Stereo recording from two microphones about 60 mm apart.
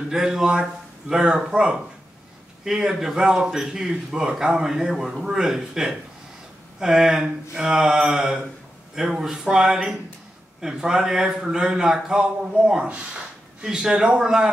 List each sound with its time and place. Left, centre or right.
0.1 s speech: centre
12.8 s a sound: centre
13.7 s speech: centre